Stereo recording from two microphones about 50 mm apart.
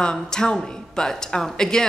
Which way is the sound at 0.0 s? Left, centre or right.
Centre.